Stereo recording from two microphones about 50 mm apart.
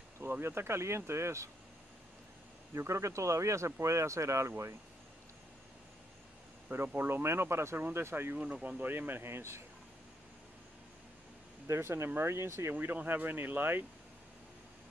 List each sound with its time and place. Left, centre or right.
0.2 s speech: right
2.7 s speech: right
7.0 s speech: right
7.2 s speech: right
11.6 s speech: right
12.7 s speech: right